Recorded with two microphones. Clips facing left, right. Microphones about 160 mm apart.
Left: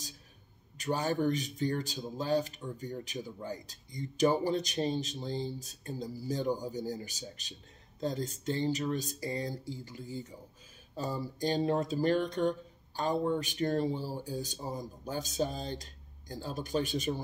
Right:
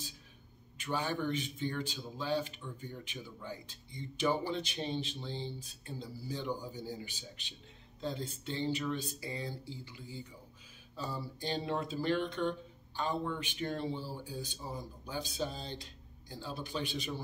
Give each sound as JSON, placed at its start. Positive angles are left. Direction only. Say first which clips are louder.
{"t": 0.7, "sound": "speech", "louder": "left 5 dB", "side_deg": 40}